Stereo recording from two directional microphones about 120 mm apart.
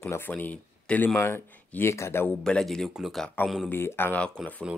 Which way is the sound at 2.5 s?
5° left (ahead or behind).